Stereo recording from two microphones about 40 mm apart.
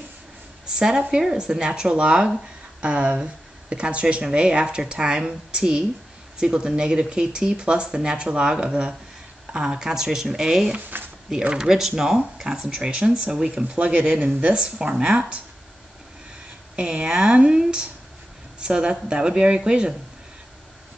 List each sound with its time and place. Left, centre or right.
0.7 s speech: centre
10.9 s a sound: right
11.5 s speech: centre
16.7 s speech: right